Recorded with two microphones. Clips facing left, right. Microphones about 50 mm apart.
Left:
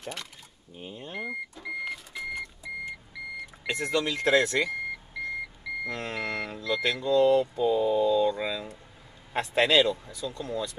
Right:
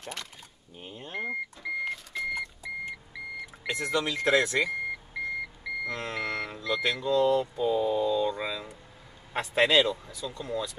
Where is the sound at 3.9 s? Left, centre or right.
Centre.